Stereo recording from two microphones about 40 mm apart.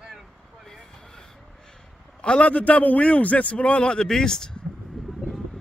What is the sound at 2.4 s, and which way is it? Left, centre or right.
A man's voice, left.